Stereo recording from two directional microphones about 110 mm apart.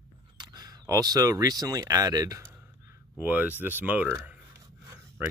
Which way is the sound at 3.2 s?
15° right (ahead or behind).